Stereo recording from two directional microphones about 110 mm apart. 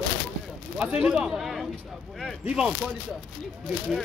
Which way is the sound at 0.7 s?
10° right (ahead or behind).